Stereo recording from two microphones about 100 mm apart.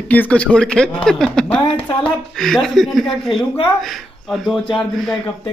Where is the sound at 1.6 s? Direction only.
55° left (ahead or behind).